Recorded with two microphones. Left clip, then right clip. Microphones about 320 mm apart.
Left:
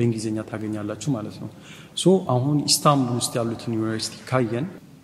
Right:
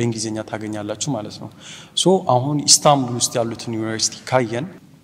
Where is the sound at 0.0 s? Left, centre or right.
Centre.